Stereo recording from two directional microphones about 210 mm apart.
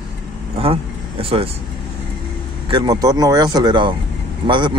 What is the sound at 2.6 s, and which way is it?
A man's voice, 20° right (ahead or behind).